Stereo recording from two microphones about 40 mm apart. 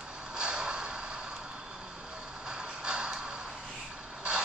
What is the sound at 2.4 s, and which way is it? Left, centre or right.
Music, centre.